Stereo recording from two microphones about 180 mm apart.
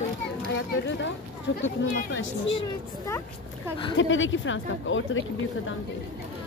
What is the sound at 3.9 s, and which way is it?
A woman's voice, 90° left.